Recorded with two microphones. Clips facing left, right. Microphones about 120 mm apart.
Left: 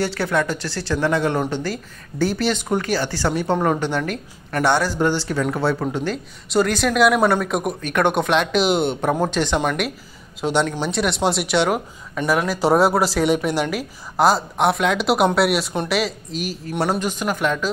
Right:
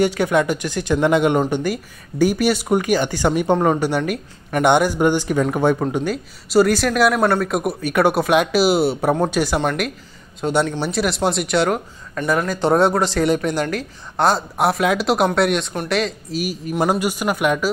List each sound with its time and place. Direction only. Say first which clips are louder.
0.0 s speech: right 4 dB; 15° right (ahead or behind)
6.5 s speech: right 3 dB; 5° right (ahead or behind)